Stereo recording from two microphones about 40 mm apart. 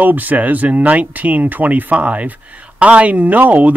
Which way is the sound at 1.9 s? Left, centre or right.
Right.